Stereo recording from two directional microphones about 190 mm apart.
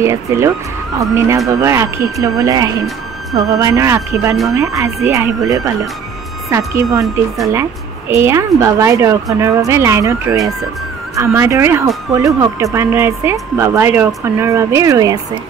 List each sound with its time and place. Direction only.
0.0 s a woman's voice: 15° right (ahead or behind)
8.1 s a woman's voice: 15° right (ahead or behind)